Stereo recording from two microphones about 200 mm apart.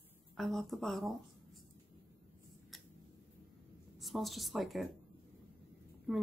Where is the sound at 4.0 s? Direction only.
Centre (ahead or behind).